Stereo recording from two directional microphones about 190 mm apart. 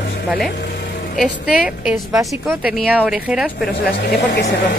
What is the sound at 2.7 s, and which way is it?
Speech, 5° right (ahead or behind).